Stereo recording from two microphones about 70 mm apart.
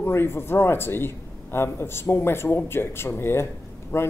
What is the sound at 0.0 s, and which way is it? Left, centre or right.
A man's voice, left.